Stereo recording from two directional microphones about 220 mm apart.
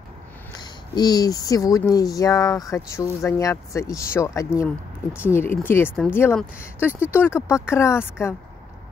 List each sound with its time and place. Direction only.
0.6 s speech: 20° left (ahead or behind)